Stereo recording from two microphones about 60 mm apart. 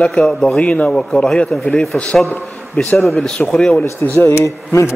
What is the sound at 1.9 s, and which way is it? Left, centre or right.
A man's voice, left.